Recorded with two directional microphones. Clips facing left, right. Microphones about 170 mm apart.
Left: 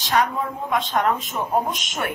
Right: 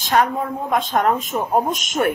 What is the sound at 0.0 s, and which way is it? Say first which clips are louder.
Speech: right 3 dB; 50° right (ahead or behind).